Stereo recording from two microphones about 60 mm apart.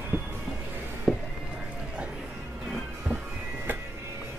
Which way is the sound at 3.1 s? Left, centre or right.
Right.